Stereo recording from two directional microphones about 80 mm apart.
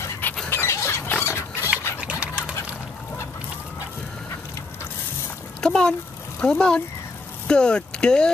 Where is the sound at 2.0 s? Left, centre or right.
Centre.